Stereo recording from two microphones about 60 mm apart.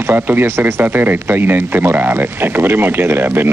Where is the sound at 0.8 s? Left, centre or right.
Right.